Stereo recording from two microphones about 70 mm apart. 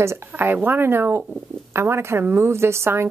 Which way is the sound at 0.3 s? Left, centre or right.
Right.